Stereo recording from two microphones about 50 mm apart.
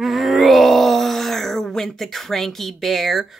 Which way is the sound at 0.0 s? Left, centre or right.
Centre.